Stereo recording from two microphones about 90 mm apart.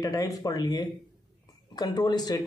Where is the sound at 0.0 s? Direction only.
40° left (ahead or behind).